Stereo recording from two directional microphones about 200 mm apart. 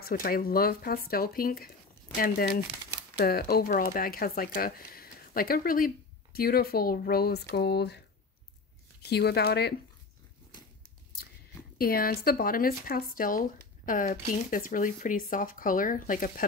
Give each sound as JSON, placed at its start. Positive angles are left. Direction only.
{"t": 0.0, "sound": "speech", "side_deg": 45}
{"t": 9.1, "sound": "speech", "side_deg": 55}
{"t": 11.8, "sound": "speech", "side_deg": 50}